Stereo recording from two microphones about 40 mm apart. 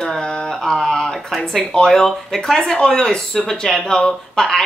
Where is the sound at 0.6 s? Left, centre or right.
Centre.